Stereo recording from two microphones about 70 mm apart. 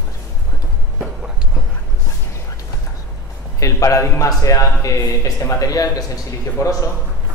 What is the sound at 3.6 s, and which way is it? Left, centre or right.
A man's voice, left.